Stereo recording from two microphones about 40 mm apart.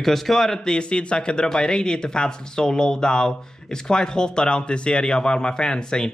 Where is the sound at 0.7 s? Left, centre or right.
Left.